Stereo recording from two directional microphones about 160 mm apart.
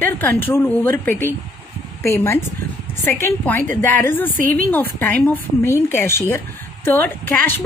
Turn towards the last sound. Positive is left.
turn(degrees=10)  # may be behind; listen again after turning